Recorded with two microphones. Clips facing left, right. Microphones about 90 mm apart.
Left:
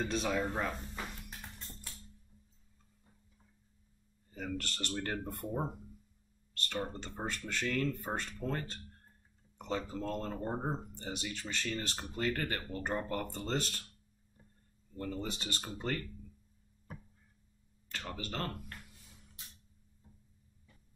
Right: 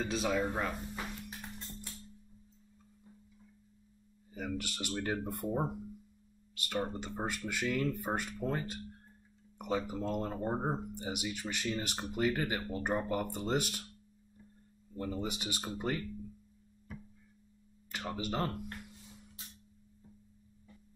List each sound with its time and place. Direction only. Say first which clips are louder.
0.0 s speech: right 1 dB; centre (ahead or behind)
4.3 s speech: right 1 dB; 10° right (ahead or behind)
15.0 s speech: right 2 dB; 10° right (ahead or behind)
16.9 s a sound: right 2 dB; 45° left (ahead or behind)
17.8 s speech: right 4 dB; 15° right (ahead or behind)